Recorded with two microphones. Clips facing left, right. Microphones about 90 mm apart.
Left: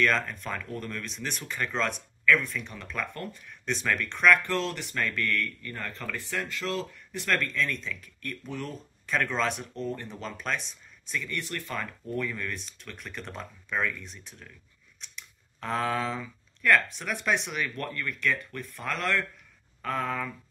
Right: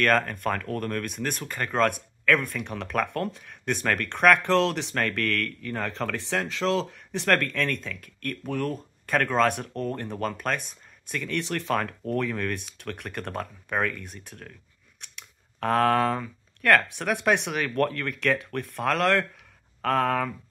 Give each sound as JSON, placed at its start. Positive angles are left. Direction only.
{"t": 0.0, "sound": "speech", "side_deg": -55}